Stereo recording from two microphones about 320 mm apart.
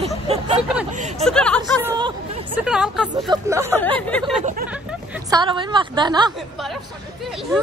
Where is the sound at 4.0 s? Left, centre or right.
Centre.